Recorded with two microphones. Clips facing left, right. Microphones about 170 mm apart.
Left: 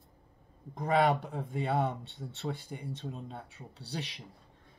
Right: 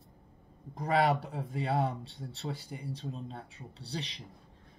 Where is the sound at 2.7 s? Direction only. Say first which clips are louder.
Even; centre (ahead or behind).